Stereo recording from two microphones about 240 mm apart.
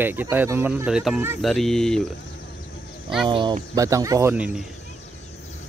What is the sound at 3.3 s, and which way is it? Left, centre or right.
Speech, centre.